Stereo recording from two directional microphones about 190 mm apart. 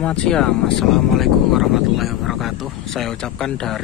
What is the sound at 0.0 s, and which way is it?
Speech, 5° left (ahead or behind).